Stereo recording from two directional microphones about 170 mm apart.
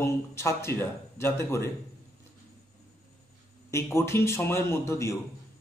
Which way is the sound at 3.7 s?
15° left (ahead or behind).